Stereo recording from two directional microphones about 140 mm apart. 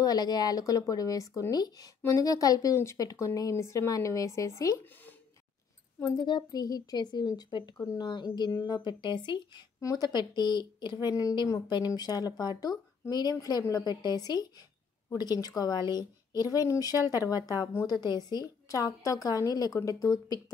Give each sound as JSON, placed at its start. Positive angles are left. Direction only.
{"t": 0.0, "sound": "speech", "side_deg": 25}